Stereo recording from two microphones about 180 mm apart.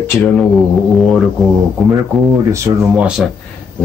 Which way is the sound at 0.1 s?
15° left (ahead or behind).